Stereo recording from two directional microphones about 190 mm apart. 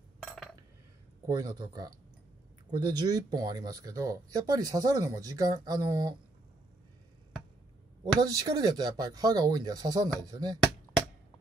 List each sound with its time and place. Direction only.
1.2 s speech: 20° right (ahead or behind)
8.2 s speech: 20° right (ahead or behind)